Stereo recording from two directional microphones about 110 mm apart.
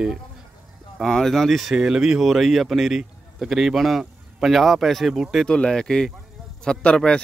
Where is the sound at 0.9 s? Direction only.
5° left (ahead or behind).